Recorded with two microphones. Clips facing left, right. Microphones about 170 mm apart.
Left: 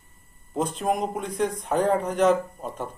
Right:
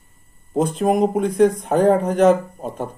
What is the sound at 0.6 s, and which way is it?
Speech, 45° right (ahead or behind).